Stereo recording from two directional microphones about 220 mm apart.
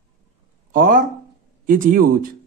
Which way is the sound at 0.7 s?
40° right (ahead or behind).